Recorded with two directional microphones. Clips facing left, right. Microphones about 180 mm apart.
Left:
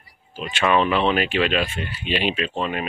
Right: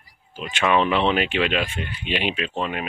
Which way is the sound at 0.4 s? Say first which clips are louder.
Left 1 dB; 10° right (ahead or behind).